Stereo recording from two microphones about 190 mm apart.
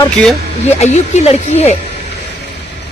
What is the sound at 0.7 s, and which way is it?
Speech, 35° left (ahead or behind).